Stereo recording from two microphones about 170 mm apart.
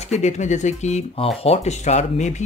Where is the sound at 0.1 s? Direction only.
45° left (ahead or behind).